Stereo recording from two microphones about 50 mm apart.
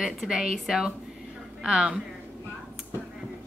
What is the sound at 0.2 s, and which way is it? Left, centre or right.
A woman's voice, centre.